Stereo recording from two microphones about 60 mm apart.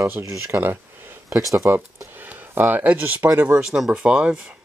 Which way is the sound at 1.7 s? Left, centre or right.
Right.